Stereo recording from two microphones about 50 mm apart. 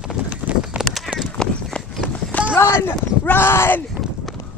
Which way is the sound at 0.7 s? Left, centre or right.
Right.